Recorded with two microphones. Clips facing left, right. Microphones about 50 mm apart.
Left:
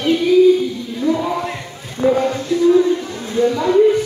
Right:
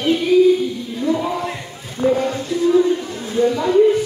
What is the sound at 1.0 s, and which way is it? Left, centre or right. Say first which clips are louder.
Speech: left 2 dB; centre.